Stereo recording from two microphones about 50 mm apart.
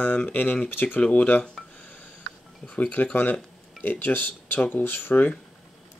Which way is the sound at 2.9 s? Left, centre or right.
Left.